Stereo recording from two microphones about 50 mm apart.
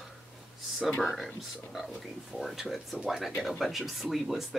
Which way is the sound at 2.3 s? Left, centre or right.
Centre.